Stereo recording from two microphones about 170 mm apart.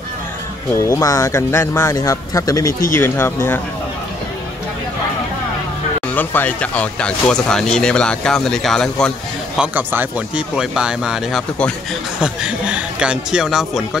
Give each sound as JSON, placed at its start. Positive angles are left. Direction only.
{"t": 0.7, "sound": "speech", "side_deg": 20}
{"t": 6.1, "sound": "speech", "side_deg": 10}
{"t": 9.6, "sound": "speech", "side_deg": -10}